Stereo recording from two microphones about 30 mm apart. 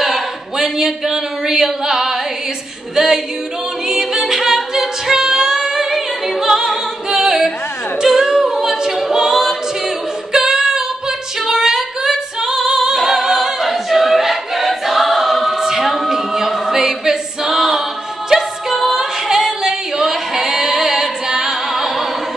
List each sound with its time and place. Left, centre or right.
0.0 s speech: centre
3.8 s a capella: centre
5.9 s singing: centre
8.0 s a capella: centre
18.3 s music: centre
19.3 s singing: centre